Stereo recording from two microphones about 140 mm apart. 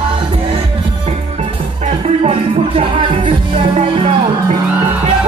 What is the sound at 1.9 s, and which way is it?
Music, 45° right (ahead or behind).